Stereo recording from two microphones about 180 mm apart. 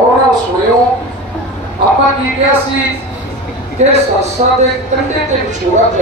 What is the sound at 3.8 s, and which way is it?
Speech, 40° right (ahead or behind).